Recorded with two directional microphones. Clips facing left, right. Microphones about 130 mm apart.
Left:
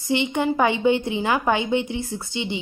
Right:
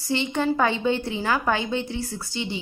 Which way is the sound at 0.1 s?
20° left (ahead or behind).